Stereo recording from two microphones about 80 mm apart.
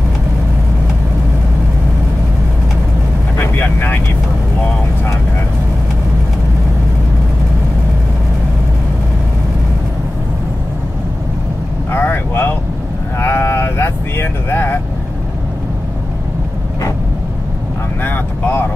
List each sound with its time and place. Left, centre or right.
3.3 s vehicle: left
11.9 s vehicle: left
13.2 s sheep: left
18.0 s vehicle: left